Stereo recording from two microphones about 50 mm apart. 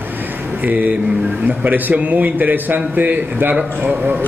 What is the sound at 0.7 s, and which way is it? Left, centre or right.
A man's voice, right.